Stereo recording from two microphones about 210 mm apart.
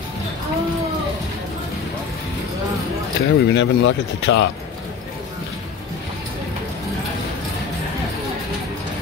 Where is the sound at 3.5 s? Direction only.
60° left (ahead or behind).